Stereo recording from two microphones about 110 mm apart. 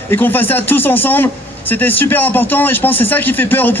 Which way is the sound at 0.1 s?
20° left (ahead or behind).